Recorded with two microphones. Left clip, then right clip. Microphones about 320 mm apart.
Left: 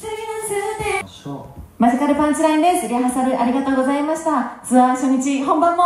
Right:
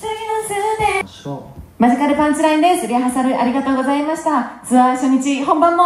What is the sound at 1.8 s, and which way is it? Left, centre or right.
A woman's voice, centre.